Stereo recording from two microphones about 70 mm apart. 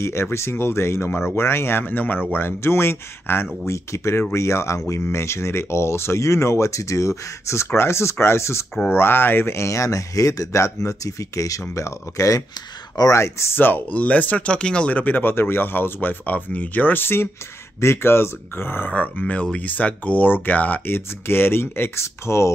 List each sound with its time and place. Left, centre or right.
0.0 s speech: left
13.6 s speech: left
18.9 s speech: left